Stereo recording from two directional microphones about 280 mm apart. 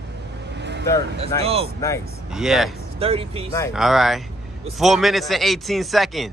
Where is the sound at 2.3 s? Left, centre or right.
Centre.